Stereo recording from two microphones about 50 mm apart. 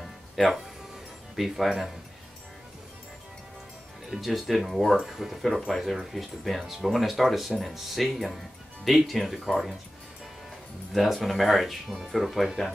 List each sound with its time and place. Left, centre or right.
0.0 s music: centre
1.3 s speech: centre
4.1 s speech: centre
10.9 s speech: centre